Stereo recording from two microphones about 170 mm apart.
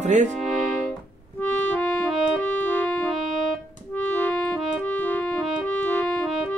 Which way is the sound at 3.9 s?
10° left (ahead or behind).